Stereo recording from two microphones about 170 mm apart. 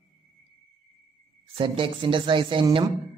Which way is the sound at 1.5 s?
30° right (ahead or behind).